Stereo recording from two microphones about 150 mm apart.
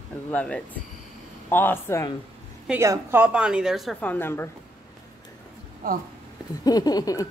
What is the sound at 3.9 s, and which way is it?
Speech, 10° left (ahead or behind).